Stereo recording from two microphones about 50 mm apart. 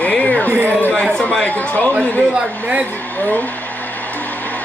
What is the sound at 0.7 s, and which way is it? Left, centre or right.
A man's voice, left.